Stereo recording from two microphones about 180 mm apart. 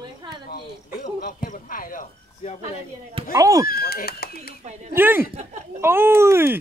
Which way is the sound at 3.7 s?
55° left (ahead or behind).